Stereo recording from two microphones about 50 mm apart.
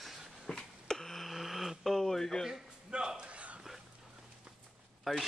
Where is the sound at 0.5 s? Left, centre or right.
Centre.